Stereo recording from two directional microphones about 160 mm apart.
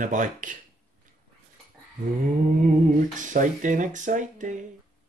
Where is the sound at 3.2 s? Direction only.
50° right (ahead or behind).